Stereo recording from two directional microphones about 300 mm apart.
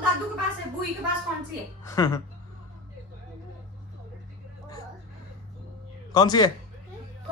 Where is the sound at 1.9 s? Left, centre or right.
Centre.